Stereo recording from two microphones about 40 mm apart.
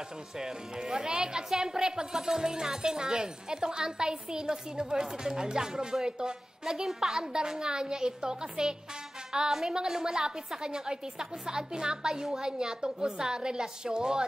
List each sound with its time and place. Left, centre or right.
0.4 s speech: centre